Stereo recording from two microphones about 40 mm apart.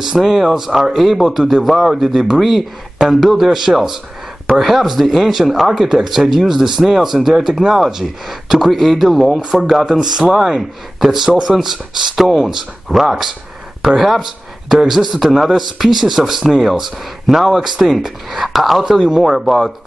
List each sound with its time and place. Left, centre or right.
0.2 s speech: centre
9.8 s speech: centre
19.0 s speech: centre
19.4 s speech: centre